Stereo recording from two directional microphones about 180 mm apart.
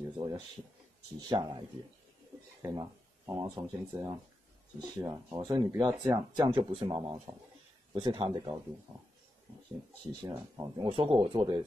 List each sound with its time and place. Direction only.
1.3 s speech: 25° right (ahead or behind)
2.6 s speech: 20° right (ahead or behind)
7.0 s speech: 20° right (ahead or behind)
10.2 s speech: 20° right (ahead or behind)
10.9 s speech: 30° right (ahead or behind)